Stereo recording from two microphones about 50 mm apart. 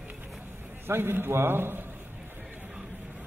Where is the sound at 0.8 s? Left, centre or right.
Right.